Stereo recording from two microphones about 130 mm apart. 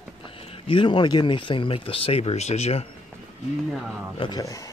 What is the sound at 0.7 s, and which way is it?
A man's voice, 40° left (ahead or behind).